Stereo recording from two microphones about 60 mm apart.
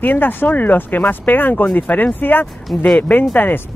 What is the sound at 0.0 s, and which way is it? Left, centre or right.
Speech, left.